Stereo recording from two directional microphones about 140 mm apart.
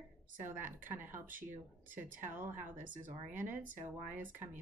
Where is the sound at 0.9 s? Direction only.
15° right (ahead or behind).